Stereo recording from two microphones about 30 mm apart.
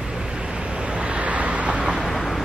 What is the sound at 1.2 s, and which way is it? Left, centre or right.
Vehicle, right.